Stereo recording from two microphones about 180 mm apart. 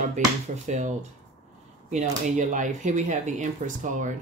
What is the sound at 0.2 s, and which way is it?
Speech, 45° right (ahead or behind).